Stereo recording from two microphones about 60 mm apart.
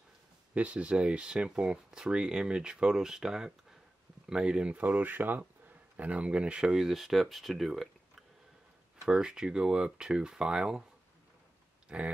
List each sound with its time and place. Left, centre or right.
0.6 s speech: right; by 7.9 s centre
9.0 s speech: centre
11.9 s speech: centre